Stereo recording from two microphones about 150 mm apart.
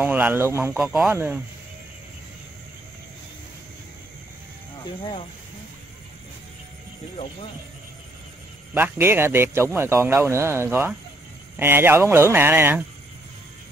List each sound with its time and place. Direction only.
0.0 s speech: 15° right (ahead or behind)
0.7 s speech: centre (ahead or behind)
8.7 s speech: 15° right (ahead or behind)